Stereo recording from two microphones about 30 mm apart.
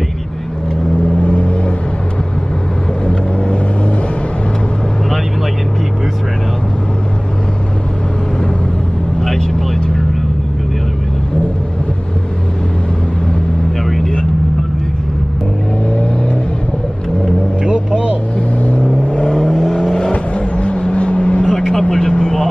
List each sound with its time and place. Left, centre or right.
1.1 s vehicle: left
3.1 s vehicle: left
9.2 s vehicle: centre
13.8 s vehicle: centre
17.6 s vehicle: right
18.6 s vehicle: left
19.3 s vehicle: centre
20.1 s vehicle: left
21.5 s vehicle: centre